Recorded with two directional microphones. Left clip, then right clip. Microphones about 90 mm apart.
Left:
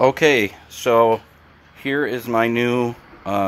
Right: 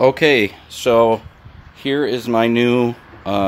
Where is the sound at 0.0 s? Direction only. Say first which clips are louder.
Right 2 dB; 5° right (ahead or behind).